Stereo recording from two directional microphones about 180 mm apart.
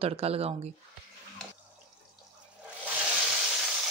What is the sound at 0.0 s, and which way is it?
Speech, 35° right (ahead or behind).